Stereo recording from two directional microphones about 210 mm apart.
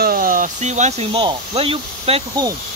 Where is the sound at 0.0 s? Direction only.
45° right (ahead or behind); by 2.5 s 25° right (ahead or behind).